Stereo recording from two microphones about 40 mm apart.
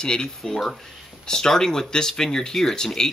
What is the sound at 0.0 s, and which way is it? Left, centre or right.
Speech, centre.